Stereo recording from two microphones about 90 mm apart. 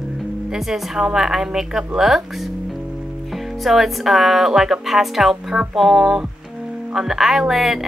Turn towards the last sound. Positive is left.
turn(degrees=-5)  # may be behind; listen again after turning